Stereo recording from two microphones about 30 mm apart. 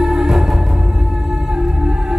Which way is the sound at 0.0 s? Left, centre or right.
Centre.